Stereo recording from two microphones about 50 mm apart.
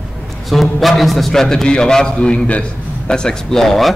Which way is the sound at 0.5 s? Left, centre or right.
Centre.